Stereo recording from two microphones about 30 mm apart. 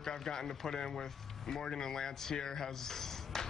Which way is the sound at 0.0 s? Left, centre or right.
Centre.